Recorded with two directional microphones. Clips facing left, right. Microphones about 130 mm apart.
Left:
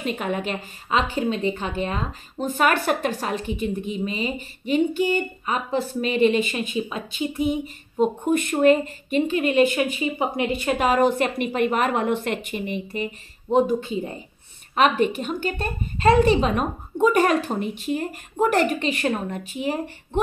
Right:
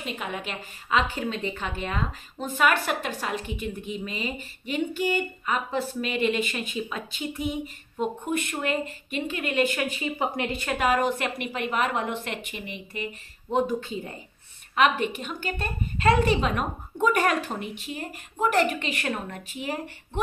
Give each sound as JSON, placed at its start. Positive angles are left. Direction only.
{"t": 0.0, "sound": "a woman's voice", "side_deg": 50}
{"t": 0.8, "sound": "a woman's voice", "side_deg": 25}
{"t": 6.5, "sound": "a woman's voice", "side_deg": 20}
{"t": 8.0, "sound": "a woman's voice", "side_deg": 40}
{"t": 9.3, "sound": "a woman's voice", "side_deg": 25}
{"t": 13.5, "sound": "a woman's voice", "side_deg": 20}
{"t": 14.8, "sound": "a woman's voice", "side_deg": 35}